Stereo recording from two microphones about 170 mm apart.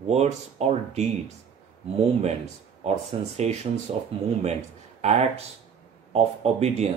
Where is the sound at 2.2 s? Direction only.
40° right (ahead or behind).